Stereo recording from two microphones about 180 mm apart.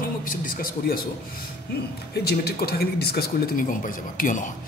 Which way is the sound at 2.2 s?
60° left (ahead or behind).